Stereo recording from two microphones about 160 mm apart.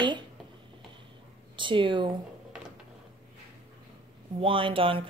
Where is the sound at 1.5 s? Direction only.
30° right (ahead or behind).